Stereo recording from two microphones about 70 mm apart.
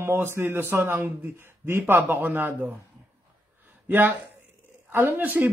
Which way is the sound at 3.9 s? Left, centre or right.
Right.